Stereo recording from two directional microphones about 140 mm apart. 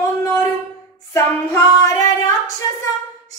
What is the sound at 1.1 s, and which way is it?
Speech, 20° left (ahead or behind).